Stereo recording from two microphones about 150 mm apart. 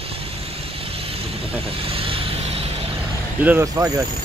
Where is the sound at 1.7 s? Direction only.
40° right (ahead or behind).